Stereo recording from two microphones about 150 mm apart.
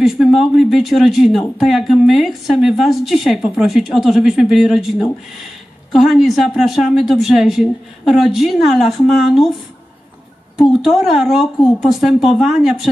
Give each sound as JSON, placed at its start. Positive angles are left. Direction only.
{"t": 0.0, "sound": "speech", "side_deg": 0}
{"t": 10.8, "sound": "speech", "side_deg": 0}